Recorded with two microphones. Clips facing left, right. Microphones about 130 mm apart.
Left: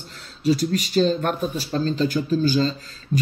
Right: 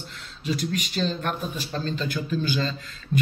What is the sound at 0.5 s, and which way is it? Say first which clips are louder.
Speech: left 7 dB; 40° left (ahead or behind).